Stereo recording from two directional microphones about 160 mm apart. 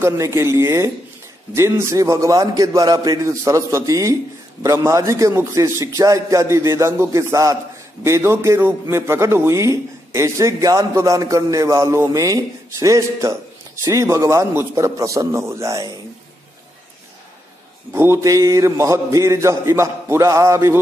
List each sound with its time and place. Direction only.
0.0 s a man's voice: 15° right (ahead or behind)
17.9 s a man's voice: 15° right (ahead or behind)